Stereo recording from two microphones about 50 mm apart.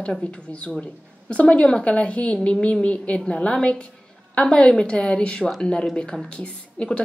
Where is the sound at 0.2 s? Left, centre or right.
Left.